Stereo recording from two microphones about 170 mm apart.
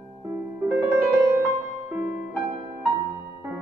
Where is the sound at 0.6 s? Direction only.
10° right (ahead or behind).